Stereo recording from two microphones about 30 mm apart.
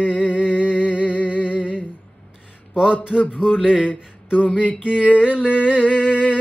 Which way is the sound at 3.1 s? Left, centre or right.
Left.